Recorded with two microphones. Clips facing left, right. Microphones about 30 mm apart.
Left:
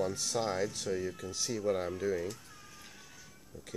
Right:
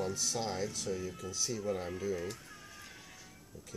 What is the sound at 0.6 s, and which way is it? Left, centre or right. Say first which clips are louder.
Speech: left 3 dB; left.